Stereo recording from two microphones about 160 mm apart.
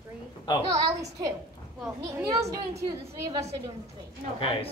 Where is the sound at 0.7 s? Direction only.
20° right (ahead or behind).